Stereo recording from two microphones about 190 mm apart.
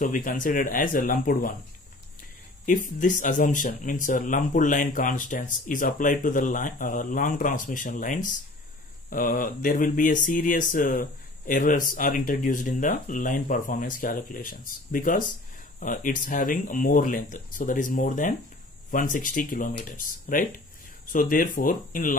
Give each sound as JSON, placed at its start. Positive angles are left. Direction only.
{"t": 0.0, "sound": "mantra", "side_deg": 45}
{"t": 2.6, "sound": "mantra", "side_deg": 45}